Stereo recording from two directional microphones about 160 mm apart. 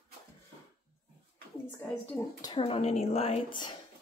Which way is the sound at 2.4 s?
30° left (ahead or behind).